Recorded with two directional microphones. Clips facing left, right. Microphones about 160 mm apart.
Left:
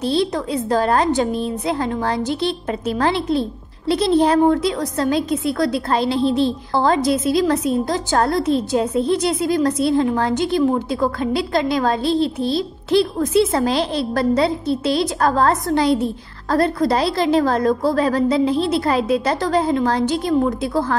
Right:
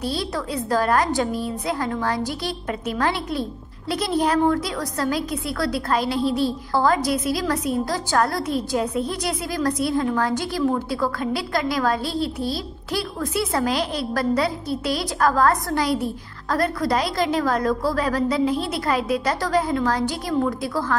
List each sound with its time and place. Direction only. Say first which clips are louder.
0.0 s a woman's voice: left 7 dB; 25° left (ahead or behind)